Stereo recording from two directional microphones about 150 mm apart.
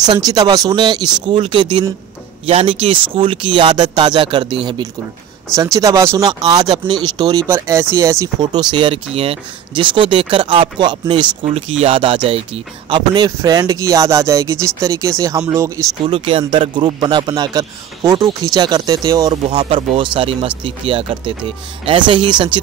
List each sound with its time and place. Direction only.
0.0 s speech: 25° right (ahead or behind)
16.1 s speech: 35° right (ahead or behind)
19.5 s speech: 35° right (ahead or behind)